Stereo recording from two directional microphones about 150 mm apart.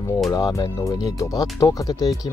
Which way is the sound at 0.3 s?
25° left (ahead or behind).